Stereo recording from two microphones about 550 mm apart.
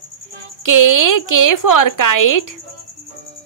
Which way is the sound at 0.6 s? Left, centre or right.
Left.